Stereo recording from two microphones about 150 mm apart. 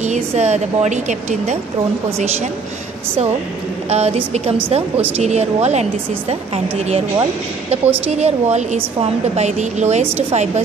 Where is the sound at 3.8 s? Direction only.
45° right (ahead or behind).